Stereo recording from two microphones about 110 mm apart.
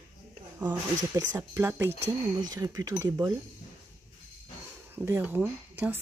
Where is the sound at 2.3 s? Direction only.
35° right (ahead or behind).